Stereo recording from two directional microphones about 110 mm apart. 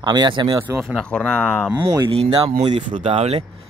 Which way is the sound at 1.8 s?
30° right (ahead or behind).